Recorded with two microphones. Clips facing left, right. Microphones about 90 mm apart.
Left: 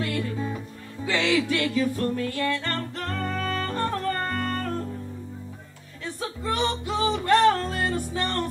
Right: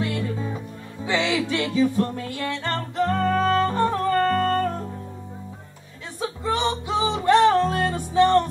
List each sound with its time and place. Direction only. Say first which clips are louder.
0.0 s music: right 1 dB; 20° right (ahead or behind)
6.2 s music: right 3 dB; 20° right (ahead or behind)